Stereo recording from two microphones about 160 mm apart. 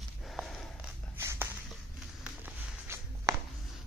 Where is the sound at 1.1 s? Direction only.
15° right (ahead or behind).